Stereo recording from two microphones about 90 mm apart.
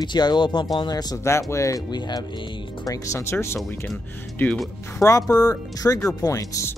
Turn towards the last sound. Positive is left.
turn(degrees=35)  # may be behind; listen again after turning